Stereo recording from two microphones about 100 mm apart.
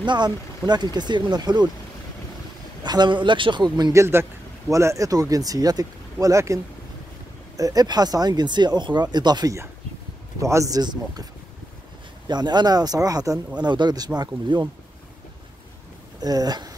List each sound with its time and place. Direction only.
0.0 s speech: 50° right (ahead or behind)
2.8 s speech: 45° right (ahead or behind)
3.9 s speech: 25° right (ahead or behind); by 9.6 s 45° right (ahead or behind)
10.4 s speech: 30° right (ahead or behind)
12.3 s speech: 45° right (ahead or behind)
16.2 s speech: 40° right (ahead or behind)